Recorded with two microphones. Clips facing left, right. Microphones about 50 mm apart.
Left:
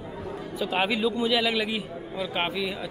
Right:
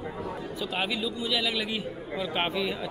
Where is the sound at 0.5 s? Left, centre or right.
Centre.